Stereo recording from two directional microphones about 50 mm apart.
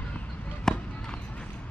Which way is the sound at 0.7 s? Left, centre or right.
Centre.